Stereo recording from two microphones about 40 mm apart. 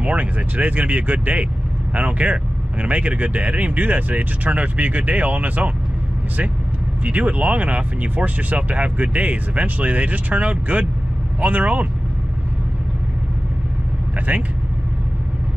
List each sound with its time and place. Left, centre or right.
0.0 s speech: right
7.1 s speech: right